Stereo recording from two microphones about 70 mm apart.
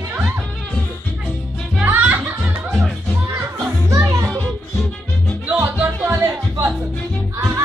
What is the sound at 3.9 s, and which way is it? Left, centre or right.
Music, right.